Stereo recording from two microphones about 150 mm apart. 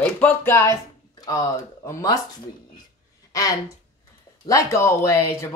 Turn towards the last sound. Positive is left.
turn(degrees=15)  # may be behind; listen again after turning